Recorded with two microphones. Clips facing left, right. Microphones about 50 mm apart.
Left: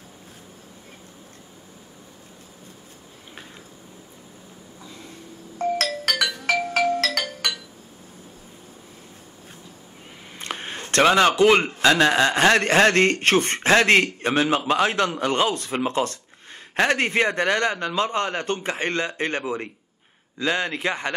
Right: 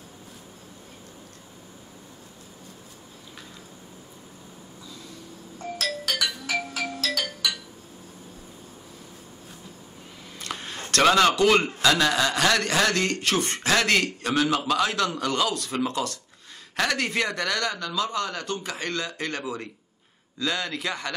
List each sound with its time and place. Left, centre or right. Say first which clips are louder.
4.8 s vehicle: left 3 dB; left
5.6 s doorbell: left 7 dB; left
6.7 s music: left 8 dB; left
10.4 s a sound: left 3 dB; left
10.8 s a man's voice: left 2 dB; left